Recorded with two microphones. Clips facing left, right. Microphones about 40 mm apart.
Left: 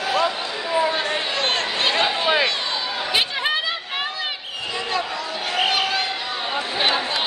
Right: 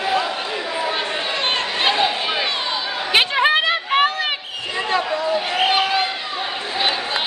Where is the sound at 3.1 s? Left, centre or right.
Right.